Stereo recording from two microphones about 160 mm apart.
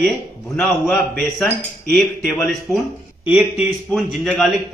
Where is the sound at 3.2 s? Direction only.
5° right (ahead or behind).